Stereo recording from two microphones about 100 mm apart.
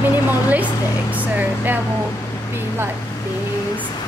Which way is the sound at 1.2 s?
15° right (ahead or behind).